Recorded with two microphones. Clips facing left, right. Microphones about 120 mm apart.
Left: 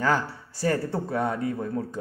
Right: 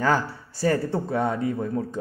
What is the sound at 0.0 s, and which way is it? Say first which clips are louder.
Speech: right 2 dB; 30° right (ahead or behind).